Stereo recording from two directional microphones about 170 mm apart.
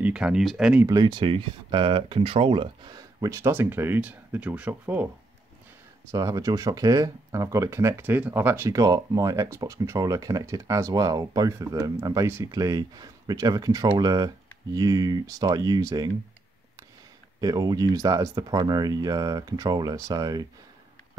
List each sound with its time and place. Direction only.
0.0 s speech: 5° right (ahead or behind)
0.8 s speech: 25° right (ahead or behind); by 5.0 s 10° right (ahead or behind)
6.1 s speech: 20° right (ahead or behind)
17.4 s speech: 20° right (ahead or behind)